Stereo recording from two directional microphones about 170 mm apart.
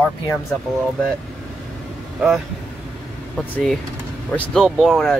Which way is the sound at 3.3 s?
5° left (ahead or behind).